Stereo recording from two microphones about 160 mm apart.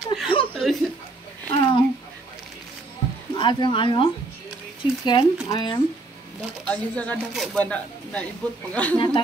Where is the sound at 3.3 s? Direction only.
30° left (ahead or behind).